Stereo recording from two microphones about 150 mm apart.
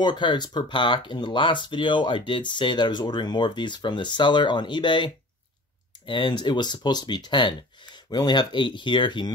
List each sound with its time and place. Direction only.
0.0 s speech: 30° left (ahead or behind)